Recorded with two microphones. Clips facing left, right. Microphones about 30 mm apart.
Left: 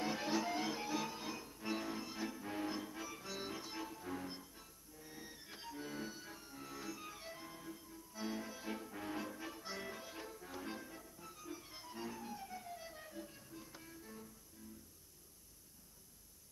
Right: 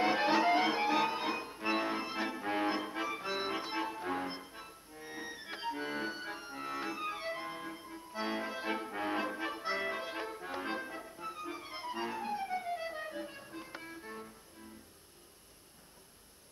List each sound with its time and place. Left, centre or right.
0.0 s music: right